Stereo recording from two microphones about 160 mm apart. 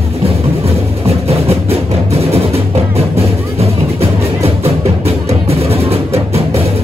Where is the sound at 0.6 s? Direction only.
40° right (ahead or behind).